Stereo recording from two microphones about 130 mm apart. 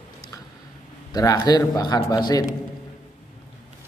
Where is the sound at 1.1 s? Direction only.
30° left (ahead or behind).